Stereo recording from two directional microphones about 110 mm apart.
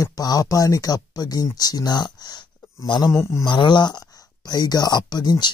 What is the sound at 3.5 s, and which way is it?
Speech, 45° left (ahead or behind).